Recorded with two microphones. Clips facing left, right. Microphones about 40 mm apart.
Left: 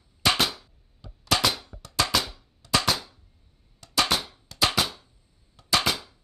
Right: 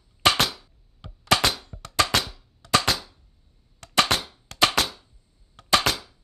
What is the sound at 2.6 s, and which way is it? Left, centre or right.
Cap gun, right.